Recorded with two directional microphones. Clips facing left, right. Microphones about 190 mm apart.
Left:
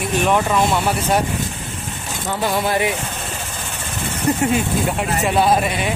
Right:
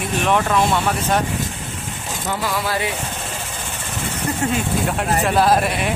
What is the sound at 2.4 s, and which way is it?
Speech, 25° left (ahead or behind).